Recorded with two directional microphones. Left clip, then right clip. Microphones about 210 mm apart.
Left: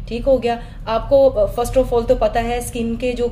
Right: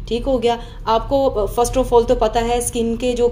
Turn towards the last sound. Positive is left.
turn(degrees=-25)  # may be behind; listen again after turning